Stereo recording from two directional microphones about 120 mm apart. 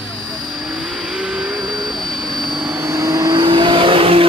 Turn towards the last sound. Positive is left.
turn(degrees=-50)  # may be behind; listen again after turning